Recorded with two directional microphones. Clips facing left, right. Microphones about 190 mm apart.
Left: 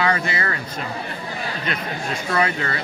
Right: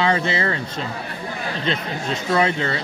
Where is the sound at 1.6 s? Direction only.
25° right (ahead or behind).